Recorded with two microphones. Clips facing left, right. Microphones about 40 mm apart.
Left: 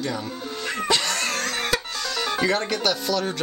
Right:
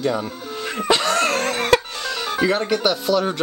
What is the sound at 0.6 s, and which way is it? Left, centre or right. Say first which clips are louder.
Music: right 4 dB; centre.